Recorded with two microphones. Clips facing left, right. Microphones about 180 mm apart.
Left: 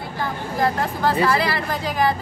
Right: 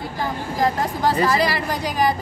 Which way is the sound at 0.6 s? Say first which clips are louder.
Right 1 dB; 15° right (ahead or behind).